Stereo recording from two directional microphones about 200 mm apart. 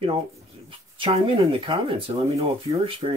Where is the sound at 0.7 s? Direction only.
25° right (ahead or behind).